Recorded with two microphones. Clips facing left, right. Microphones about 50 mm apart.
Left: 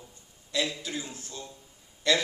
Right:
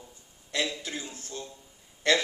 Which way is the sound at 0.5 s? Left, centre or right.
Right.